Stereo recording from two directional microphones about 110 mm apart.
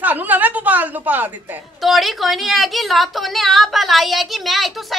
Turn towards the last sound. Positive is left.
turn(degrees=0)  # may be behind; listen again after turning